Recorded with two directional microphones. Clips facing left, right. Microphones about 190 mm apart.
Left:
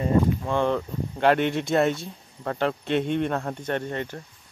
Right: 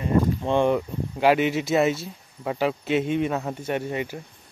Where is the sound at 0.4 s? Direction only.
20° right (ahead or behind).